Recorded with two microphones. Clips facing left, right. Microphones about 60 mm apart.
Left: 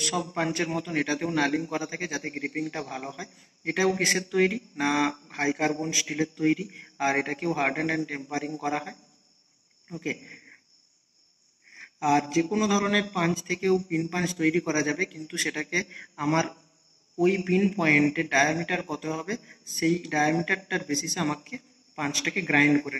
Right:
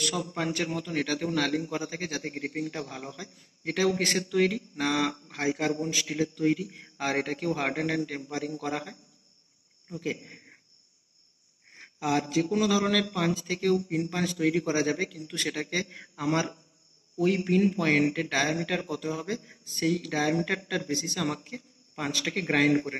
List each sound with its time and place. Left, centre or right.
0.0 s a man's voice: left
10.1 s a sound: left
11.7 s a man's voice: left
22.7 s a man's voice: left